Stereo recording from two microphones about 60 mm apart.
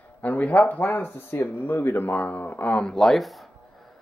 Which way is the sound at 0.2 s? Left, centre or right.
Left.